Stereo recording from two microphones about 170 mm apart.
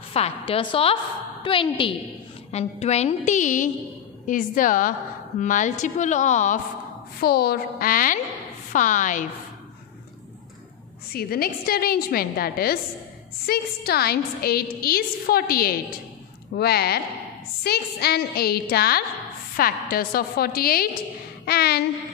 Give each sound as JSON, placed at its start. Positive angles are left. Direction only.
{"t": 0.1, "sound": "a woman's voice", "side_deg": 35}
{"t": 7.2, "sound": "a woman's voice", "side_deg": 65}
{"t": 11.1, "sound": "a woman's voice", "side_deg": 65}
{"t": 16.5, "sound": "a sound", "side_deg": 70}
{"t": 19.5, "sound": "a woman's voice", "side_deg": 60}
{"t": 21.5, "sound": "a sound", "side_deg": 70}